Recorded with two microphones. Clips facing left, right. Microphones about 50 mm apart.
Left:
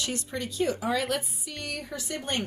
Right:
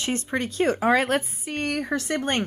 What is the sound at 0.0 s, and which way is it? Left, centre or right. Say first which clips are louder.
Speech: right 6 dB; right.